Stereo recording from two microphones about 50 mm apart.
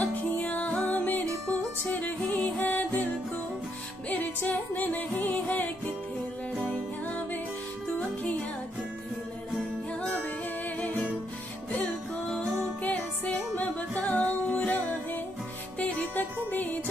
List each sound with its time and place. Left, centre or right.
0.0 s music: left
4.1 s music: left
10.8 s music: left
12.8 s music: left
15.8 s music: left